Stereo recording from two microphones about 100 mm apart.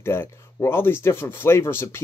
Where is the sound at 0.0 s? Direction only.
25° left (ahead or behind).